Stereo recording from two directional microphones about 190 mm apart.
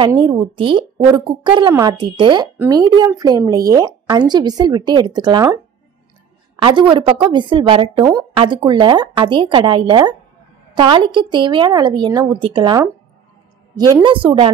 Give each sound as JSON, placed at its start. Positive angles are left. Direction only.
{"t": 0.0, "sound": "speech", "side_deg": -25}
{"t": 6.6, "sound": "speech", "side_deg": -25}
{"t": 8.0, "sound": "speech", "side_deg": -15}
{"t": 14.0, "sound": "speech", "side_deg": -25}